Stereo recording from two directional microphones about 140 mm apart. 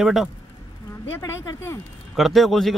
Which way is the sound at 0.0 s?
Centre (ahead or behind).